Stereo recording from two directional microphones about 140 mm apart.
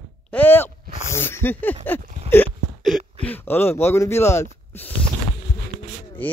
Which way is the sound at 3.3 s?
15° left (ahead or behind).